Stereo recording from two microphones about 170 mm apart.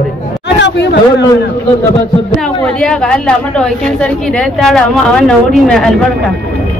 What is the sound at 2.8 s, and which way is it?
Speech, 5° left (ahead or behind).